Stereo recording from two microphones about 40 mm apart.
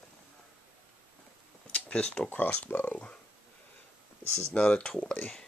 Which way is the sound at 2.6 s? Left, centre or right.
Left.